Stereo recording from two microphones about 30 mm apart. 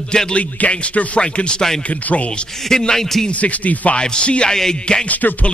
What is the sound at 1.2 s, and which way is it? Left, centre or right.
Speech, left.